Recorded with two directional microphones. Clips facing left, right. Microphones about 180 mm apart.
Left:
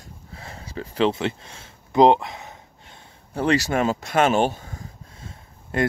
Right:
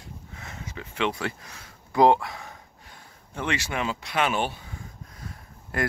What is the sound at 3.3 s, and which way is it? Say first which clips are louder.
Speech: left 9 dB; 35° left (ahead or behind).